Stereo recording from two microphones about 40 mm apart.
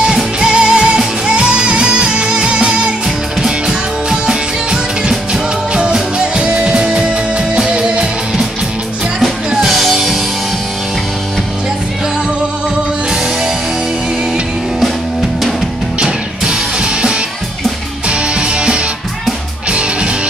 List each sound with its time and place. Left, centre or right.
0.0 s music: centre
9.7 s music: centre
16.0 s music: right